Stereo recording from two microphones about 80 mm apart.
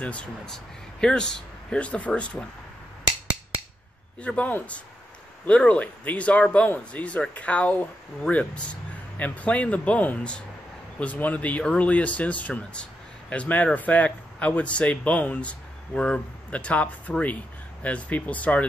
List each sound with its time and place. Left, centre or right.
0.0 s speech: centre
4.2 s a man's voice: centre